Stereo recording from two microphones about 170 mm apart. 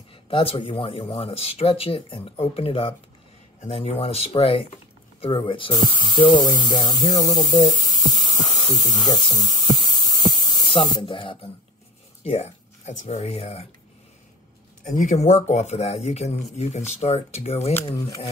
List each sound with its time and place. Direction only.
0.1 s speech: 35° left (ahead or behind)
8.4 s hum: 25° left (ahead or behind)
11.0 s speech: 30° left (ahead or behind)
15.0 s speech: 45° left (ahead or behind)
17.8 s speech: 20° left (ahead or behind)